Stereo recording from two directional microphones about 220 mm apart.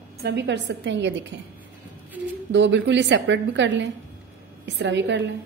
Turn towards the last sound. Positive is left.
turn(degrees=-55)  # may be behind; listen again after turning